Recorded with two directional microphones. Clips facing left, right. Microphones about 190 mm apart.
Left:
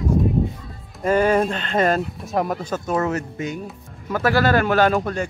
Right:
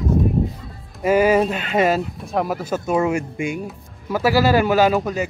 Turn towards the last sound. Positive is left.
turn(degrees=-5)  # may be behind; listen again after turning